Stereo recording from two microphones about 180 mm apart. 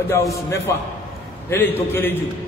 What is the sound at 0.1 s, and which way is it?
A man's voice, 15° left (ahead or behind).